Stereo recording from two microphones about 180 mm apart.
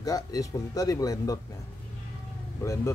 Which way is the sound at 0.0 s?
20° left (ahead or behind).